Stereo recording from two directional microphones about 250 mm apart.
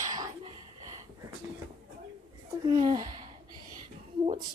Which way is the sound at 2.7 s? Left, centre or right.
Centre.